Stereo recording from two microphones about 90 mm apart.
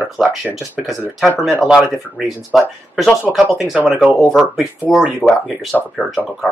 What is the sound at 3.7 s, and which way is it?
Speech, 10° right (ahead or behind).